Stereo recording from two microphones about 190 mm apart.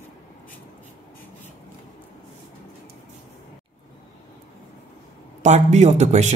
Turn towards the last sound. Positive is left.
turn(degrees=-35)  # may be behind; listen again after turning